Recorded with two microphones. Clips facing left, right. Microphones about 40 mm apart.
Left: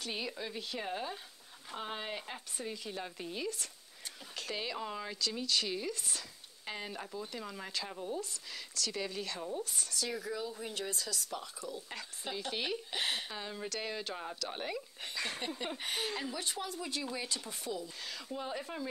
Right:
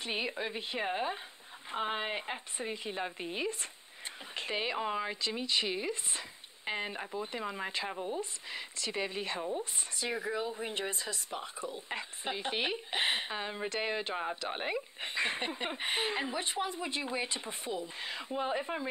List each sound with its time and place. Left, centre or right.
0.0 s speech: right